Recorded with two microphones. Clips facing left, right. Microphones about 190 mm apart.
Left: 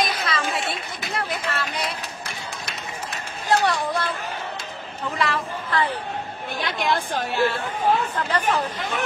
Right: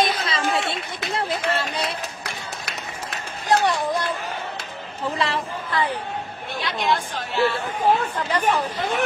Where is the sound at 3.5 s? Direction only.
15° right (ahead or behind).